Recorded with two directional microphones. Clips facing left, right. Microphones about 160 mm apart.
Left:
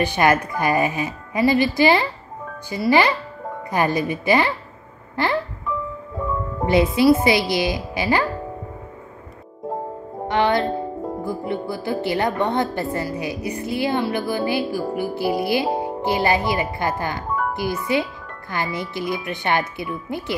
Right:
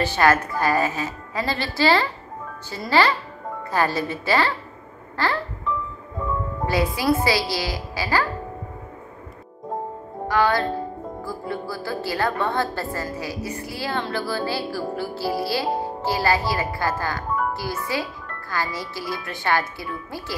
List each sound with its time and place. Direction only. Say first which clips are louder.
0.0 s speech: left 1 dB; 15° left (ahead or behind)
5.1 s music: left 3 dB; 20° left (ahead or behind)
6.6 s a woman's voice: left 7 dB; 20° left (ahead or behind)
10.2 s music: left 1 dB; 20° left (ahead or behind)
11.2 s a woman's voice: left 3 dB; 20° left (ahead or behind)